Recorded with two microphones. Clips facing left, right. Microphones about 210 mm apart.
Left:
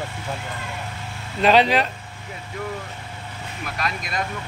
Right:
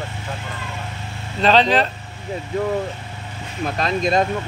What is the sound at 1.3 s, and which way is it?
Speech, 10° left (ahead or behind).